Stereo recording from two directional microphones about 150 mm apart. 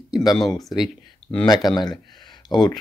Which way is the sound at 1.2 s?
5° left (ahead or behind).